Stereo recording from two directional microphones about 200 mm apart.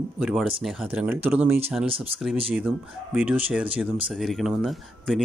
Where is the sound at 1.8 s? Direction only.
25° right (ahead or behind).